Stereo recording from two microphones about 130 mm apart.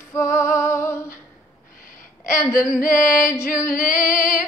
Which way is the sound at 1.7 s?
90° left.